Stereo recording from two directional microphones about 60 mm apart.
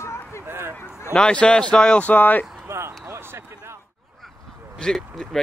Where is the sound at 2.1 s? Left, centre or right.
Left.